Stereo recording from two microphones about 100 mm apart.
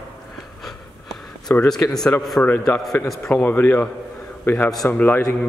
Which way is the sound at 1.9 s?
5° left (ahead or behind).